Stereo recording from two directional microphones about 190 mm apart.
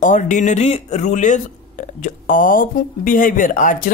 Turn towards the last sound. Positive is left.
turn(degrees=45)  # may be behind; listen again after turning